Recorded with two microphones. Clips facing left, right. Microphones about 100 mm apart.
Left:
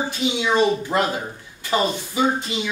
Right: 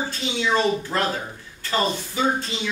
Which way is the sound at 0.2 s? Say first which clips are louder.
Left 3 dB; 15° left (ahead or behind).